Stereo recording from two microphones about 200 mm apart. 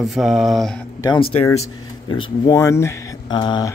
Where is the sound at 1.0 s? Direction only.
20° left (ahead or behind).